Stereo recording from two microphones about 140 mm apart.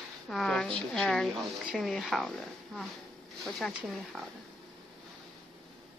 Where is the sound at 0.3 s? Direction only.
5° left (ahead or behind).